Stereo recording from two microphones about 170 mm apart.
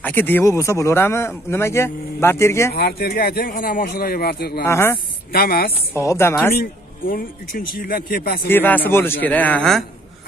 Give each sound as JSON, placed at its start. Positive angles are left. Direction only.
{"t": 0.0, "sound": "speech", "side_deg": 10}
{"t": 2.7, "sound": "speech", "side_deg": 65}
{"t": 4.6, "sound": "speech", "side_deg": 15}
{"t": 5.3, "sound": "speech", "side_deg": 65}
{"t": 5.9, "sound": "speech", "side_deg": 15}
{"t": 6.5, "sound": "speech", "side_deg": 60}
{"t": 8.5, "sound": "speech", "side_deg": 10}